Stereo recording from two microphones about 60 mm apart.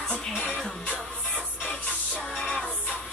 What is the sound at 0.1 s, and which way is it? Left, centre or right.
Music, left.